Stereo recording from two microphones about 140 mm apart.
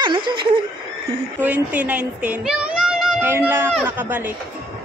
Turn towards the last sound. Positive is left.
turn(degrees=-15)  # may be behind; listen again after turning